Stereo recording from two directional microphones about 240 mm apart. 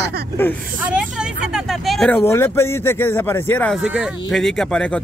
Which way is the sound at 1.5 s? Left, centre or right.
Centre.